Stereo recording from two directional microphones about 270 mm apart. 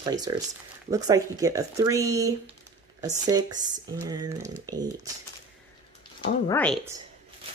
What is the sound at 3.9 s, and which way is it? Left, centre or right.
Speech, centre.